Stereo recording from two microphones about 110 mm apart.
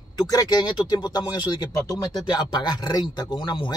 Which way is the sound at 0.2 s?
35° left (ahead or behind).